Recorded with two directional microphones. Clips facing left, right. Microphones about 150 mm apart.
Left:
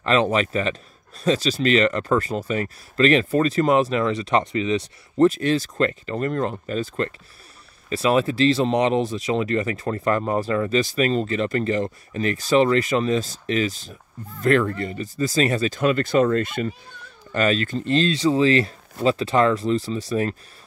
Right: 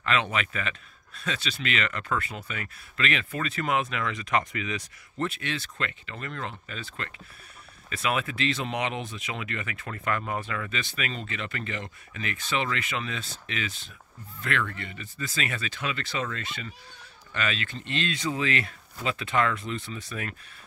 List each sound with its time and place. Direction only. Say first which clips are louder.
0.0 s speech: left 8 dB; 35° left (ahead or behind)